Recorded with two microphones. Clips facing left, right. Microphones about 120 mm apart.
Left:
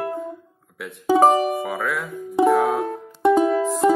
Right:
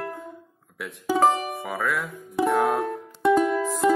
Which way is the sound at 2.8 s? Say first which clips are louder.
Left 3 dB; 25° left (ahead or behind).